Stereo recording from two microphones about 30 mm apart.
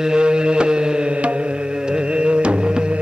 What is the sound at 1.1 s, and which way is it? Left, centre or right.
Music, right.